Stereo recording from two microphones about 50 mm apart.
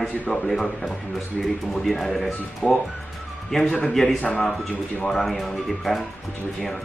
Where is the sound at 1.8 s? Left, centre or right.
Centre.